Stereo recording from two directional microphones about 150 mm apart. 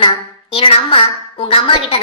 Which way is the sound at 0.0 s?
35° left (ahead or behind).